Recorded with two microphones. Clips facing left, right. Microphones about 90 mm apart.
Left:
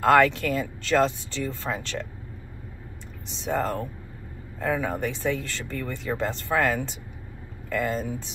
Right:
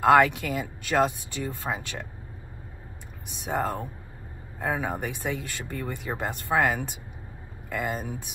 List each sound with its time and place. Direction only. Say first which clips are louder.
0.0 s speech: even; 15° right (ahead or behind)
3.4 s speech: left 2 dB; 15° right (ahead or behind)